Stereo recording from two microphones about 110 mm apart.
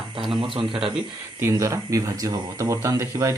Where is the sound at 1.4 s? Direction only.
30° right (ahead or behind).